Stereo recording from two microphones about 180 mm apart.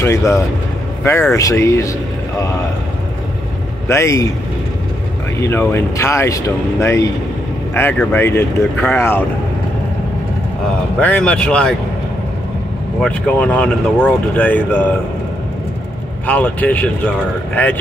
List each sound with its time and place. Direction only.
0.0 s speech: 15° left (ahead or behind)
3.9 s speech: 15° left (ahead or behind)
5.4 s speech: 15° left (ahead or behind)
11.0 s speech: 10° left (ahead or behind)
13.0 s speech: 5° left (ahead or behind)
16.3 s speech: 10° left (ahead or behind)